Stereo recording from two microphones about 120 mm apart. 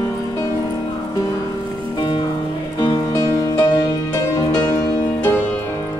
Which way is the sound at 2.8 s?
35° left (ahead or behind).